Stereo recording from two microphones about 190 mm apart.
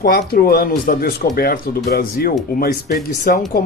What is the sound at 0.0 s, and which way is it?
Speech, 55° left (ahead or behind).